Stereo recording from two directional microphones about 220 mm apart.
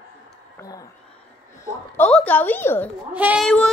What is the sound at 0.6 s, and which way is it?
Speech, 15° left (ahead or behind).